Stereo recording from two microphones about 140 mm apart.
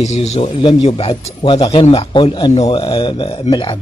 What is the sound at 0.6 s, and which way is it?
A man's voice, 40° left (ahead or behind).